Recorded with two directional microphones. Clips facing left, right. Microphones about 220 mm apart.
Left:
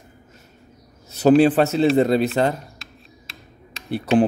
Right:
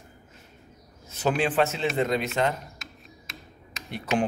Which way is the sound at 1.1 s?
35° left (ahead or behind).